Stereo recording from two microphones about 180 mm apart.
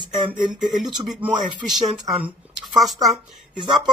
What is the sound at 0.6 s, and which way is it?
Speech, centre (ahead or behind).